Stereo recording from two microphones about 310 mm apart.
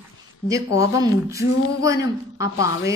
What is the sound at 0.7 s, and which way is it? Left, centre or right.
Speech, centre.